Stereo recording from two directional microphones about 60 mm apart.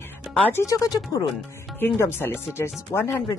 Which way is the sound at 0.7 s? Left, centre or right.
Left.